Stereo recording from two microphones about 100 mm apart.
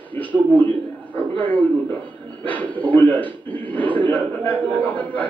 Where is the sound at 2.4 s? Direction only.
15° left (ahead or behind).